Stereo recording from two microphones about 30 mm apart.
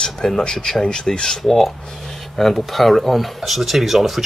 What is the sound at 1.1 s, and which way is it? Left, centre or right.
Speech, left.